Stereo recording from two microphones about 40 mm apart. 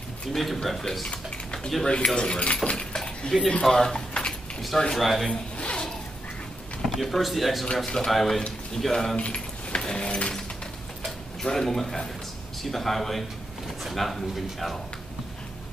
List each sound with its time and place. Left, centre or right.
0.3 s a man's voice: centre
1.1 s speech: left
2.9 s a sound: centre
3.6 s speech: centre
4.3 s keys jangling: centre
4.9 s speech: centre
5.3 s zipper: left
6.9 s speech: centre
7.8 s speech: centre
8.1 s speech: centre
9.1 s keys jangling: left
9.8 s a sound: centre
10.0 s a sound: left
11.4 s a man's voice: centre